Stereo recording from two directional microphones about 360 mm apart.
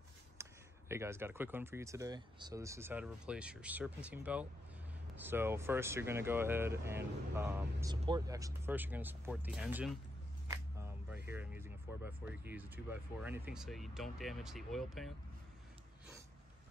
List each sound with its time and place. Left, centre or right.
0.4 s speech: centre